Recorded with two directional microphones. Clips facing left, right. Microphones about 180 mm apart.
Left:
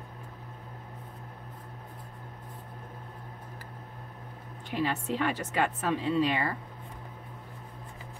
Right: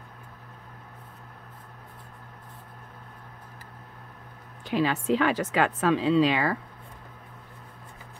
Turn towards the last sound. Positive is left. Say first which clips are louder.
# right 5 dB
turn(degrees=-90)